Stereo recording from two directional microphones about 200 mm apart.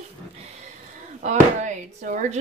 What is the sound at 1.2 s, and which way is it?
Speech, 35° right (ahead or behind).